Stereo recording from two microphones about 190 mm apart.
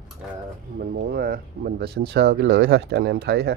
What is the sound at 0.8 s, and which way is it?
Speech, 55° right (ahead or behind).